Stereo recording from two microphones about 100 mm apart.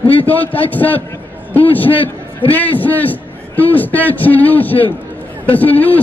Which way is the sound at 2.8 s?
15° left (ahead or behind).